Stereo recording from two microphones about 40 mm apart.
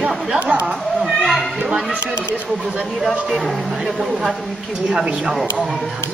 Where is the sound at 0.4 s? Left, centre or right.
Right.